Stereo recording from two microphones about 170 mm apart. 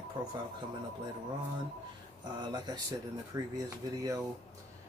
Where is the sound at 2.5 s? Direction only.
25° right (ahead or behind).